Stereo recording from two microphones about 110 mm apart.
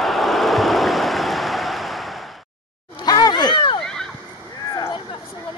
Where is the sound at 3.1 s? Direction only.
40° left (ahead or behind).